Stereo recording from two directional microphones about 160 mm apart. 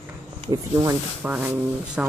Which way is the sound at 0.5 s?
20° right (ahead or behind).